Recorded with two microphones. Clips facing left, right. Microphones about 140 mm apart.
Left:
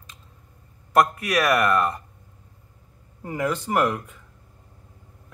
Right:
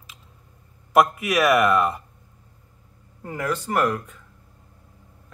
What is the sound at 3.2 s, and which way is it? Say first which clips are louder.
Speech: left 1 dB; 10° left (ahead or behind).